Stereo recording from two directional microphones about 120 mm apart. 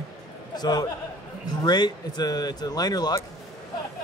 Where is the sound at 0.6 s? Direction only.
35° left (ahead or behind).